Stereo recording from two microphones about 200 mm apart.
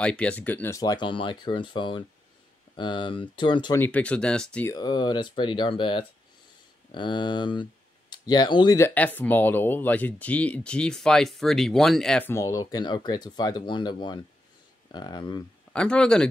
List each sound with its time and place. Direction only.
0.0 s speech: 5° left (ahead or behind); by 3.8 s 25° left (ahead or behind)
3.8 s speech: 5° left (ahead or behind)
4.7 s speech: 20° left (ahead or behind)
15.7 s speech: 5° left (ahead or behind)